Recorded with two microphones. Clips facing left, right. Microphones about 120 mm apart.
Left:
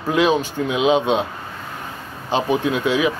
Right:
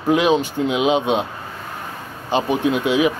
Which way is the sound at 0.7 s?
5° right (ahead or behind).